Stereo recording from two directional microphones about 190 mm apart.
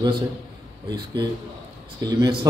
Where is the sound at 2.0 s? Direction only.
20° right (ahead or behind).